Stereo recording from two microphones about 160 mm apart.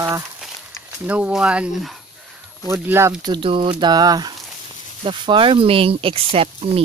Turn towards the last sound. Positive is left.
turn(degrees=-35)  # may be behind; listen again after turning